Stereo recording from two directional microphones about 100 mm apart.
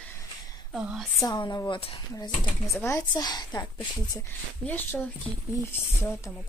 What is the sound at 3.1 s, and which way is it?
Speech, 40° left (ahead or behind).